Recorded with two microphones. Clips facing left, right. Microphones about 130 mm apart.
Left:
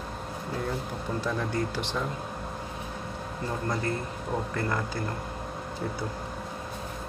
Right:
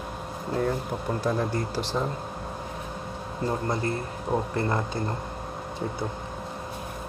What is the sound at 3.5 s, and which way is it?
Speech, 30° right (ahead or behind).